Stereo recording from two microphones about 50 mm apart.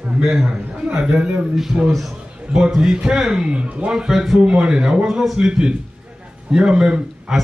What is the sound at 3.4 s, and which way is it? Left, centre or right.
Speech, right.